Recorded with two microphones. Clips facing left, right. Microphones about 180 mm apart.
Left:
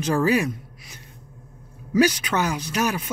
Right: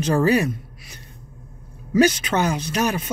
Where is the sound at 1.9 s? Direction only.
10° left (ahead or behind).